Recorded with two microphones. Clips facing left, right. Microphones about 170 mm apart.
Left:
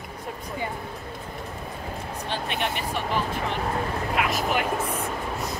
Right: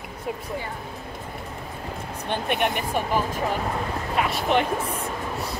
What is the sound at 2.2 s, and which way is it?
Speech, 55° right (ahead or behind).